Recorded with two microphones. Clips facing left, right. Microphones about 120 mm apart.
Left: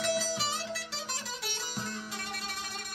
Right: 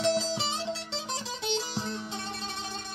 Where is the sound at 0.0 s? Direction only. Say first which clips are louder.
Right 4 dB; 25° right (ahead or behind).